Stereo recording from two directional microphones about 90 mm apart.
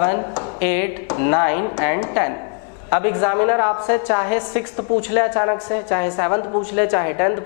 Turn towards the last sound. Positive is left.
turn(degrees=20)  # may be behind; listen again after turning